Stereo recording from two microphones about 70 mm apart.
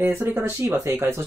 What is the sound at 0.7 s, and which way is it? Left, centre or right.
Speech, right.